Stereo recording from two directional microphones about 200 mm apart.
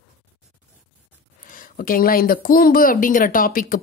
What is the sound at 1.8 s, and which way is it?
A woman's voice, 45° left (ahead or behind).